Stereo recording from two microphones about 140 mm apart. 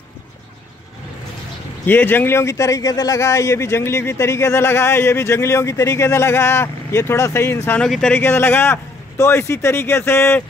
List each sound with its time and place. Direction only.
1.9 s speech: 15° left (ahead or behind)
8.2 s a man's voice: 15° left (ahead or behind)